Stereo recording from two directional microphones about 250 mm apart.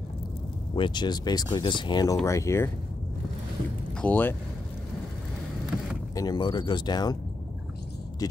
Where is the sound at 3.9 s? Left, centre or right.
Centre.